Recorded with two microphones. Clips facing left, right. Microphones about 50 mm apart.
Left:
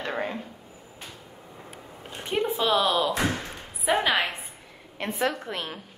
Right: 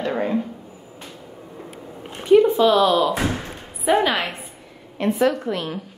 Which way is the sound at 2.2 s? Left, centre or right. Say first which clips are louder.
Right 14 dB; left.